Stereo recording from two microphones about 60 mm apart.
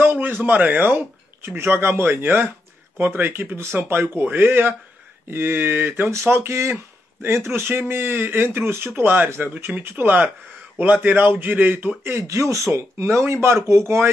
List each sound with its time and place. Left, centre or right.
0.0 s speech: right
4.2 s speech: right
5.9 s a man's voice: right
12.2 s speech: right